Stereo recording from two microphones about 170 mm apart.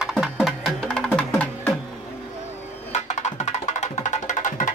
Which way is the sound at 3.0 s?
40° left (ahead or behind).